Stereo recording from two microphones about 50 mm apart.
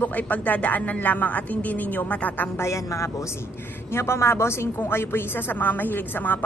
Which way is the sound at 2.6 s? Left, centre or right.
Left.